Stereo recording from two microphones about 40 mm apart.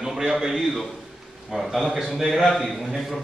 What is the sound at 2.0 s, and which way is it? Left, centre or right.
A man's voice, centre.